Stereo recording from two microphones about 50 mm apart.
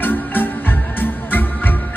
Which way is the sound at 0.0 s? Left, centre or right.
Left.